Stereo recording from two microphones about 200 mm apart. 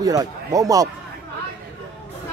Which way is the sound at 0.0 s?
20° right (ahead or behind).